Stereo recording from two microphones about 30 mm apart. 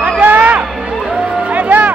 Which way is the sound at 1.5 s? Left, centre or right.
Right.